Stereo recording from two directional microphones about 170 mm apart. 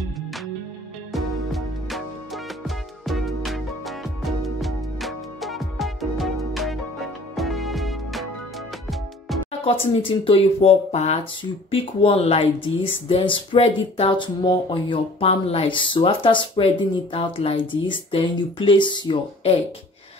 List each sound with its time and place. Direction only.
1.1 s music: centre (ahead or behind)
9.5 s speech: 35° left (ahead or behind)